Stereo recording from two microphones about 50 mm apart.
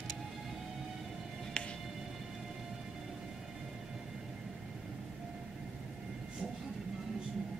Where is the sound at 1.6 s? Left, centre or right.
Left.